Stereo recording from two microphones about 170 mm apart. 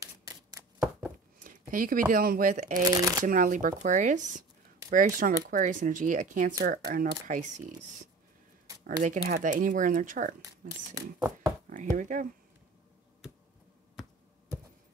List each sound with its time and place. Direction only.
0.0 s chopping: 20° right (ahead or behind)
1.4 s speech: 55° right (ahead or behind)
2.8 s speech: 20° right (ahead or behind)
3.3 s speech: 50° right (ahead or behind)
6.6 s speech: 75° right (ahead or behind)
6.9 s speech: 50° right (ahead or behind)
11.7 s speech: 50° right (ahead or behind)